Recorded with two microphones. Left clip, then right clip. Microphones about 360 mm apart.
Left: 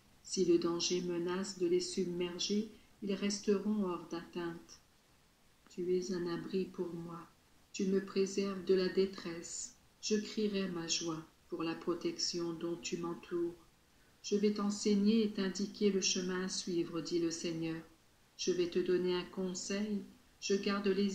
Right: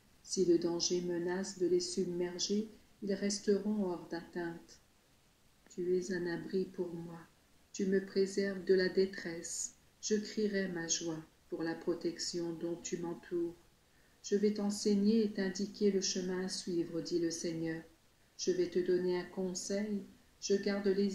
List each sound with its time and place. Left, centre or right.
0.3 s speech: centre
5.7 s speech: centre
7.7 s speech: centre
14.3 s speech: centre